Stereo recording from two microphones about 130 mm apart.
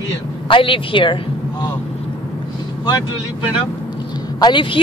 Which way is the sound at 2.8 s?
30° left (ahead or behind).